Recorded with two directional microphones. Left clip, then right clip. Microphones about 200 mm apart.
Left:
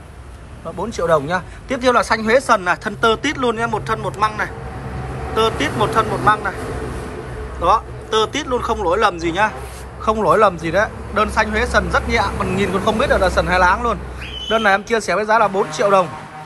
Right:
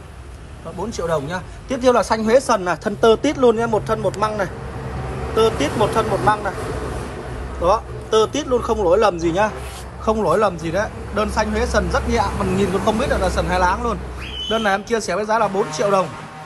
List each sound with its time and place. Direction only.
0.7 s speech: 10° right (ahead or behind)
1.8 s speech: 15° right (ahead or behind)
6.2 s speech: 5° left (ahead or behind)
7.6 s speech: 15° right (ahead or behind)